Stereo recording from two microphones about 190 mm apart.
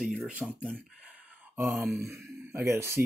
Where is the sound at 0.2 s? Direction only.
5° right (ahead or behind).